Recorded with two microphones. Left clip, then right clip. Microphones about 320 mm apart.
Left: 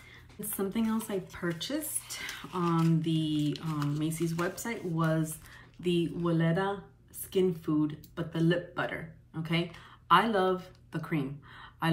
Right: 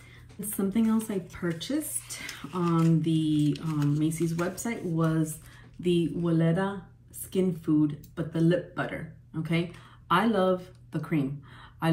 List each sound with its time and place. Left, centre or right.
0.6 s speech: centre